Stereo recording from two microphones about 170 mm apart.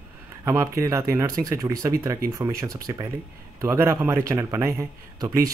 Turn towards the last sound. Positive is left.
turn(degrees=-20)  # may be behind; listen again after turning